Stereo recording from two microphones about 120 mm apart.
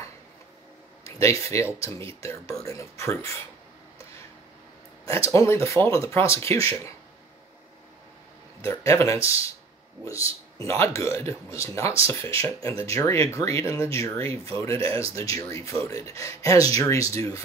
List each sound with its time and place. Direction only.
1.4 s speech: 25° left (ahead or behind)
5.0 s speech: 25° left (ahead or behind)
8.6 s speech: 25° left (ahead or behind)